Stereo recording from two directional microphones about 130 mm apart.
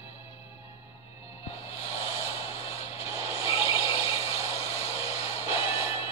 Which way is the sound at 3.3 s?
45° left (ahead or behind).